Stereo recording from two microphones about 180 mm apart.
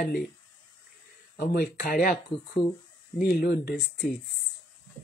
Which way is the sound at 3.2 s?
55° left (ahead or behind).